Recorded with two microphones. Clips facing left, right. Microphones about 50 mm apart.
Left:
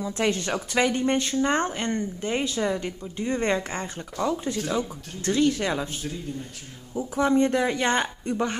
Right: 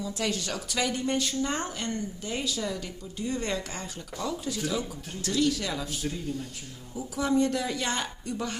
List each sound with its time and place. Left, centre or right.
0.0 s speech: left
7.0 s speech: left